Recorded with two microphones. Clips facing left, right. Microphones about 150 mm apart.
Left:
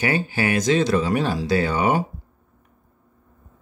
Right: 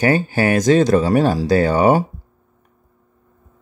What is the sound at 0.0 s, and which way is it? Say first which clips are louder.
Speech: right 6 dB; 45° right (ahead or behind).